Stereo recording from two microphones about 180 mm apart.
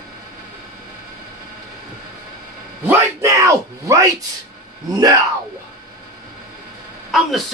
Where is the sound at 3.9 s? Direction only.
20° right (ahead or behind).